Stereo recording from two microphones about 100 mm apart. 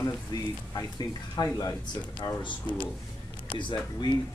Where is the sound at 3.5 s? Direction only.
55° left (ahead or behind).